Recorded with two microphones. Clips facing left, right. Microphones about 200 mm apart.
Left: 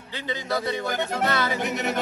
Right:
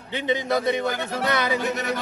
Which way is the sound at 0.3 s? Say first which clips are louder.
Right 5 dB; 20° right (ahead or behind).